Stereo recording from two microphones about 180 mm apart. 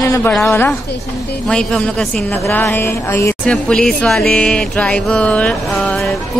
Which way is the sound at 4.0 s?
5° left (ahead or behind).